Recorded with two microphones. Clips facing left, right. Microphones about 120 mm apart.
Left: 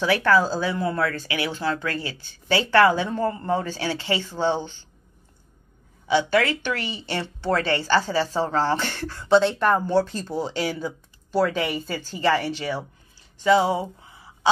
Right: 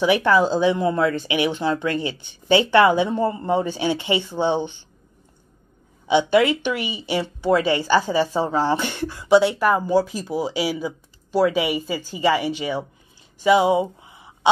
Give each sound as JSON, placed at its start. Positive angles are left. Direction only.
{"t": 0.0, "sound": "speech", "side_deg": -15}
{"t": 6.0, "sound": "speech", "side_deg": -20}
{"t": 13.4, "sound": "a sound", "side_deg": -15}